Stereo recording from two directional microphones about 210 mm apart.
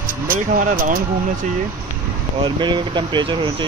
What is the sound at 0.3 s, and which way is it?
Speech, 40° right (ahead or behind).